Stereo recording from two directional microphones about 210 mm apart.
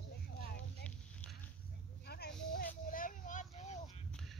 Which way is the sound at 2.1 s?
50° left (ahead or behind).